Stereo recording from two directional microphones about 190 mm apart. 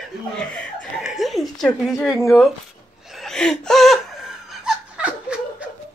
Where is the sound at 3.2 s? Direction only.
5° left (ahead or behind).